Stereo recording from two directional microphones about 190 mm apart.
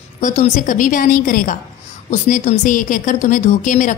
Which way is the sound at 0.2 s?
40° left (ahead or behind).